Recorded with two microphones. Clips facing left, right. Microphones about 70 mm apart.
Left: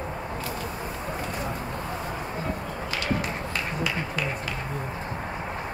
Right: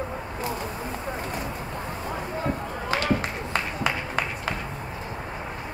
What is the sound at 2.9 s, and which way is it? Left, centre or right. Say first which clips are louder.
Run: right 4 dB; right.